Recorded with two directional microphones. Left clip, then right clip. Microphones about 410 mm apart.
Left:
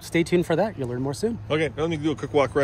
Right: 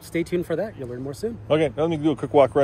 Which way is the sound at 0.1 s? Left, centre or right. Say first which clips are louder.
Left 3 dB; centre.